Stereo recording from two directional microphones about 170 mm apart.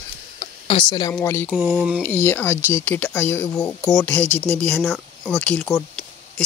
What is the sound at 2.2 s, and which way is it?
Speech, 10° left (ahead or behind).